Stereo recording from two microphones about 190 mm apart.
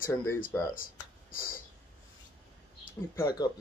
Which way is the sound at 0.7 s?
50° left (ahead or behind).